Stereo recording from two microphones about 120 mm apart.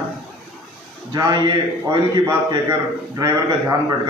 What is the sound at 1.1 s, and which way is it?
A man's voice, 35° right (ahead or behind).